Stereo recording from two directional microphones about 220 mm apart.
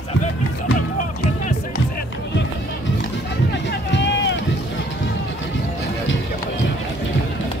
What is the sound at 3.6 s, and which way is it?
Run, 55° left (ahead or behind).